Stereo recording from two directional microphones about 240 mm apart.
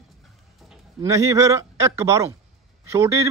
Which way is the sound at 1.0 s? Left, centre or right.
Centre.